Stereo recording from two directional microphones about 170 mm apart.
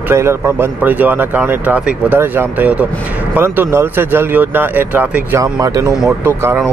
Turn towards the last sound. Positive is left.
turn(degrees=-15)  # may be behind; listen again after turning